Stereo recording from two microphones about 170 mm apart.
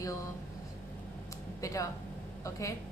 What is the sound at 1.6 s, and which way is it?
A woman's voice, 20° left (ahead or behind).